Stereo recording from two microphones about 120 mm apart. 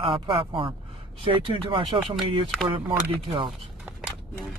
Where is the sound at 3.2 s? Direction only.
45° right (ahead or behind).